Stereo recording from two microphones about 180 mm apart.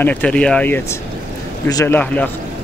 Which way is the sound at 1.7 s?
20° left (ahead or behind).